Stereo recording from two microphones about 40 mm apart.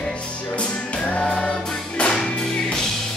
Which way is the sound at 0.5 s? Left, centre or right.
Left.